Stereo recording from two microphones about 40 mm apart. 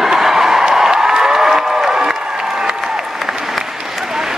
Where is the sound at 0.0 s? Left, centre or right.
Centre.